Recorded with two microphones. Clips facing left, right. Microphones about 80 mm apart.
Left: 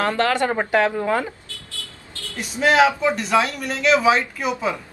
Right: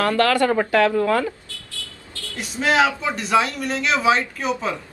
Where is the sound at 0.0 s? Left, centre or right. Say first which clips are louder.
Right 2 dB; left.